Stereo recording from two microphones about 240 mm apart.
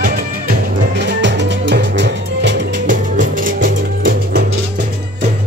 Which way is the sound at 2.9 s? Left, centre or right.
Right.